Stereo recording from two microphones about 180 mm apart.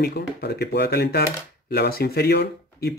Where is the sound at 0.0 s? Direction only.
60° left (ahead or behind).